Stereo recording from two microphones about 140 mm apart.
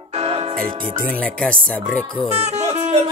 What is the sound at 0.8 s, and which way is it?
Music, 75° right (ahead or behind).